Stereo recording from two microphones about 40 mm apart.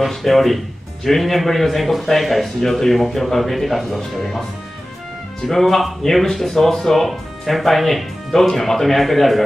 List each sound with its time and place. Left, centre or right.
0.0 s a man's voice: centre
5.5 s a man's voice: centre